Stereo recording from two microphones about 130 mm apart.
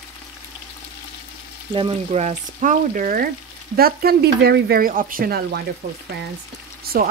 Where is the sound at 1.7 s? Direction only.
40° right (ahead or behind).